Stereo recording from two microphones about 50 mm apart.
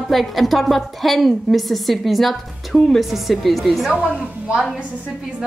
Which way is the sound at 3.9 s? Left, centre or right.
Right.